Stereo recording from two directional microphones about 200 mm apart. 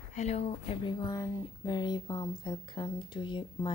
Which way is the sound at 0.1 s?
35° left (ahead or behind).